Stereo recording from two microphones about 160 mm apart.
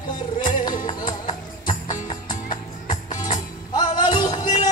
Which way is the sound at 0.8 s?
30° left (ahead or behind).